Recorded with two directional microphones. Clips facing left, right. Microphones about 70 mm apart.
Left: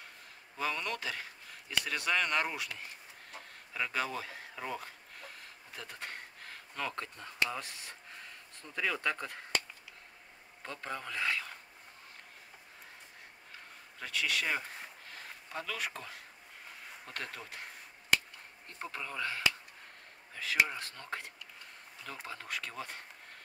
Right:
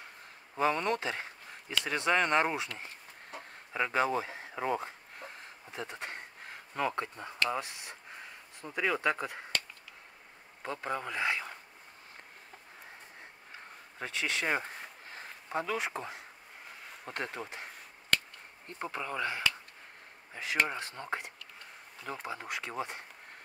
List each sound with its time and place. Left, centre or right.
0.6 s speech: right
2.8 s chicken: right
7.4 s speech: centre
10.6 s speech: centre
13.9 s speech: right
18.7 s speech: right